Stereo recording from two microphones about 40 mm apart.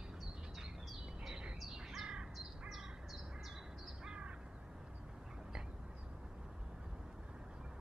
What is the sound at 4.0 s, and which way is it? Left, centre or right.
Crow, right.